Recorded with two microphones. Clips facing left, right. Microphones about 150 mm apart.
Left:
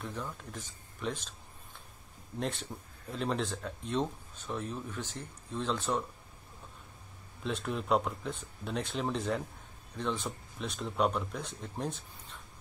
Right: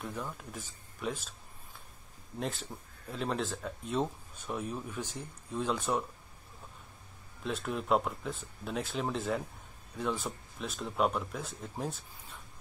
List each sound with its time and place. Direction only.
0.0 s speech: 5° right (ahead or behind)
2.3 s speech: centre (ahead or behind)
7.4 s speech: centre (ahead or behind)